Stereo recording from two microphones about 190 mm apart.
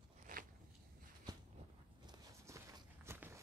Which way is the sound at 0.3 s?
45° right (ahead or behind).